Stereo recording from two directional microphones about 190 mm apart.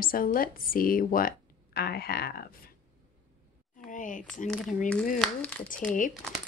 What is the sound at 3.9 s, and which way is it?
Speech, 45° left (ahead or behind).